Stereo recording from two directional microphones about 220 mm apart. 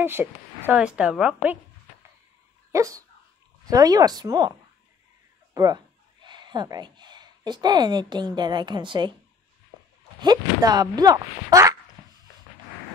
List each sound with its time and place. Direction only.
0.0 s a woman's voice: 10° right (ahead or behind)
2.7 s speech: 15° right (ahead or behind)
10.2 s speech: 15° right (ahead or behind)